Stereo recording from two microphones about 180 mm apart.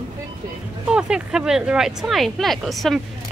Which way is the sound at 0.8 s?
5° right (ahead or behind).